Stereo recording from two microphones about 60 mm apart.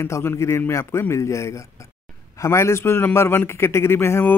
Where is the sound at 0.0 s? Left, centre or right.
Left.